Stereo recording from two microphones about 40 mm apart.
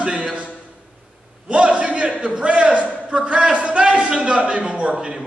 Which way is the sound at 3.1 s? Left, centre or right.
Right.